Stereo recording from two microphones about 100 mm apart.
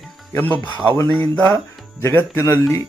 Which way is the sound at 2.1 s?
25° left (ahead or behind).